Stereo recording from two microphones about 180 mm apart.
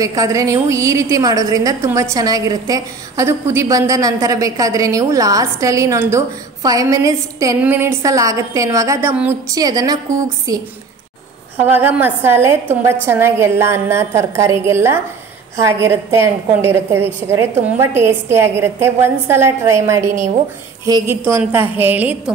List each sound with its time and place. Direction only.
0.0 s a woman's voice: 20° right (ahead or behind)
11.6 s a woman's voice: 10° right (ahead or behind)